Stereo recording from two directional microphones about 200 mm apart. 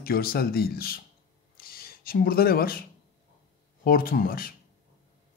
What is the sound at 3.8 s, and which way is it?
Speech, 45° left (ahead or behind).